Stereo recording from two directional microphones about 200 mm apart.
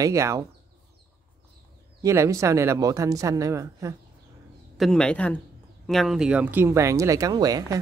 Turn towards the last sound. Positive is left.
turn(degrees=-20)  # may be behind; listen again after turning